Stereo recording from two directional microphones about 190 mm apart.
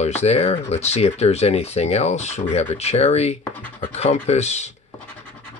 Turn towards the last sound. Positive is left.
turn(degrees=35)  # may be behind; listen again after turning